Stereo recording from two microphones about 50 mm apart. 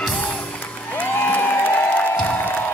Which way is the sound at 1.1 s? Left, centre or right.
Left.